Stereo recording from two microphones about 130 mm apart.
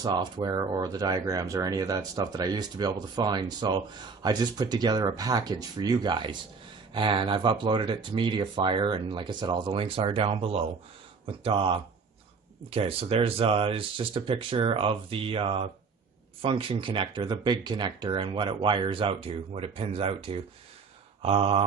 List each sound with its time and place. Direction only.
0.0 s speech: 35° right (ahead or behind)